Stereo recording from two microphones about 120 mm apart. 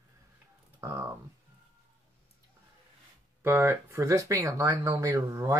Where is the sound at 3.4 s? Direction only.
20° right (ahead or behind).